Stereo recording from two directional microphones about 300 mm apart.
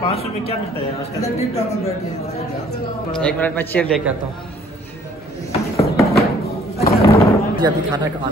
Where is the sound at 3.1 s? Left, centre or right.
Centre.